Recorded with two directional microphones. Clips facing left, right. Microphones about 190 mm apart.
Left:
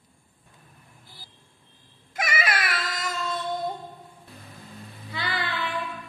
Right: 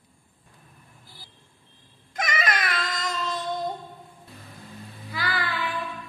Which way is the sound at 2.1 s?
10° left (ahead or behind).